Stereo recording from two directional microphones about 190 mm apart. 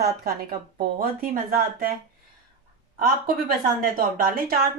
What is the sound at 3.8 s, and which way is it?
Speech, 50° right (ahead or behind).